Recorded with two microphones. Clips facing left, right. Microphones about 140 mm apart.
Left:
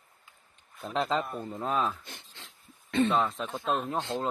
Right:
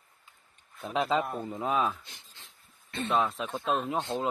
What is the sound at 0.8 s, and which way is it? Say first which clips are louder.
Speech: right 1 dB; 5° right (ahead or behind).